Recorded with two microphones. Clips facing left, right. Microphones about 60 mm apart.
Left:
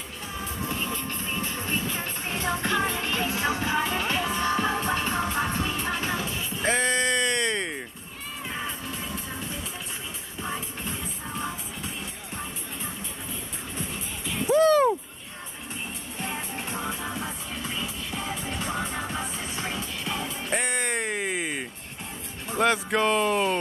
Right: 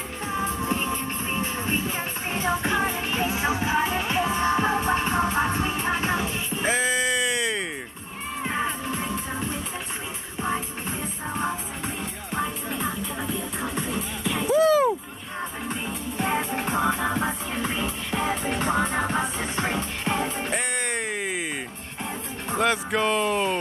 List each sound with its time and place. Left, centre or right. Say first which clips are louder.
0.3 s music: right 6 dB; right
6.6 s bleat: even; centre
8.5 s music: right 6 dB; right
11.3 s music: right 5 dB; right
12.4 s music: right 10 dB; right
13.6 s music: right 6 dB; right
14.5 s a sound: even; centre
15.7 s music: right 6 dB; right
20.5 s a sound: left 5 dB; centre
22.6 s speech: left 1 dB; centre